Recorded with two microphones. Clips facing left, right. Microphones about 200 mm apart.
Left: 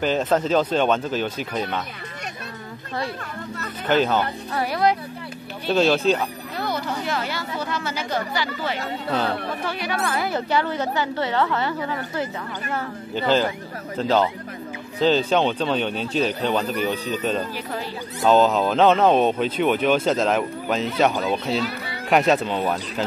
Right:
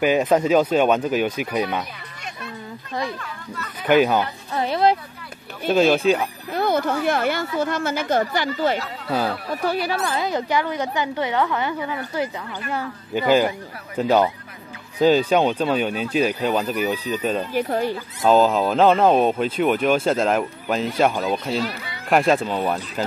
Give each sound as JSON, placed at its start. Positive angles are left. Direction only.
{"t": 0.0, "sound": "speech", "side_deg": -10}
{"t": 3.2, "sound": "speech", "side_deg": 40}
{"t": 3.8, "sound": "speech", "side_deg": -10}
{"t": 4.6, "sound": "speech", "side_deg": -25}
{"t": 5.7, "sound": "speech", "side_deg": -15}
{"t": 6.5, "sound": "speech", "side_deg": -55}
{"t": 9.7, "sound": "speech", "side_deg": -35}
{"t": 10.1, "sound": "speech", "side_deg": -20}
{"t": 17.6, "sound": "speech", "side_deg": -45}
{"t": 18.2, "sound": "speech", "side_deg": -5}